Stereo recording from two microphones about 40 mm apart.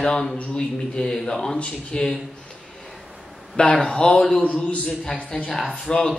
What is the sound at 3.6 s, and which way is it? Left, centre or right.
Speech, left.